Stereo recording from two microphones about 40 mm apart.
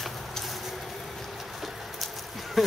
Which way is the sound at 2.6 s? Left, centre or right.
Centre.